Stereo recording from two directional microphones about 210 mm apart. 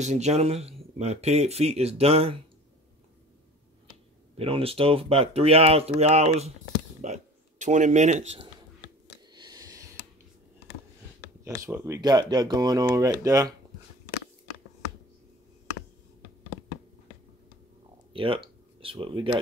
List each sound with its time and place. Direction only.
0.0 s speech: 30° right (ahead or behind)
4.4 s speech: 25° right (ahead or behind)
9.3 s a sound: 20° right (ahead or behind)
11.4 s speech: 15° right (ahead or behind)
18.1 s speech: 25° right (ahead or behind)